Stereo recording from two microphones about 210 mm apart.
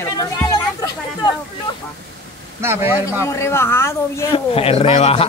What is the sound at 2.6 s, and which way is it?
Speech, 10° right (ahead or behind).